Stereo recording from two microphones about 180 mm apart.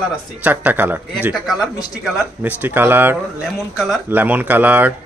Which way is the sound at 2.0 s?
10° right (ahead or behind).